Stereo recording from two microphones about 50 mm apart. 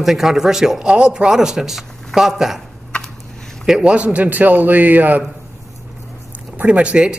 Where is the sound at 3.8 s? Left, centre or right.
Right.